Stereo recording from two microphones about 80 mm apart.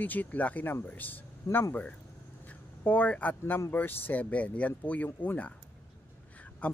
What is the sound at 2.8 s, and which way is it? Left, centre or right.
Speech, centre.